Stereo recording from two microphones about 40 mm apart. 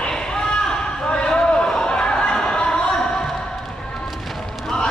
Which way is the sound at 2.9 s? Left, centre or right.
Centre.